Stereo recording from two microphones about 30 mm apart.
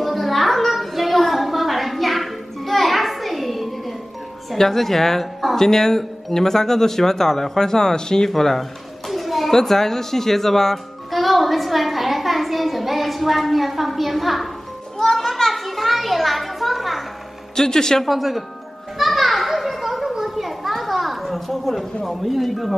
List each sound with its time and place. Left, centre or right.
0.0 s a sound: centre
4.6 s speech: centre
9.0 s a sound: centre
9.6 s speech: centre
11.1 s a child's voice: centre
15.0 s a sound: centre
17.6 s a man's voice: centre
18.0 s speech: centre
18.9 s children playing: centre